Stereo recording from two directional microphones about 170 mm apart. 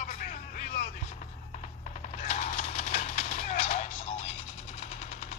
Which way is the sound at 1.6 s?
45° left (ahead or behind).